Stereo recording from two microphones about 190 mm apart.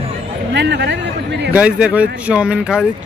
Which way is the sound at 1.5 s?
5° right (ahead or behind).